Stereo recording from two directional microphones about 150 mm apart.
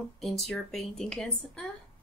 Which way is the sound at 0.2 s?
Centre (ahead or behind).